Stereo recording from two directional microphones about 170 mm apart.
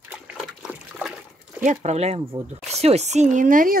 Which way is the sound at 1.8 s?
40° right (ahead or behind).